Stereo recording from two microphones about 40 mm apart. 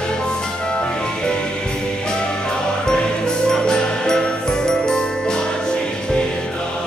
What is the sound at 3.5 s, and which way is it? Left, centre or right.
Jingle bell, centre.